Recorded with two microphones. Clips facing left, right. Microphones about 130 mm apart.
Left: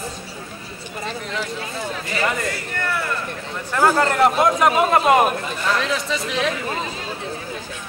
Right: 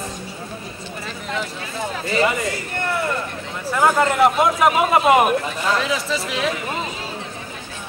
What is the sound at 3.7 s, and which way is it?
Speech, centre (ahead or behind).